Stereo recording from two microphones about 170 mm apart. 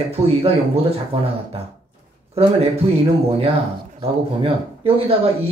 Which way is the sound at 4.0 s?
35° right (ahead or behind).